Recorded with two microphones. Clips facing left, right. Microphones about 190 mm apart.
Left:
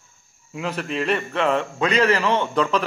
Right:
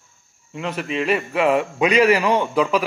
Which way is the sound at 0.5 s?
Centre (ahead or behind).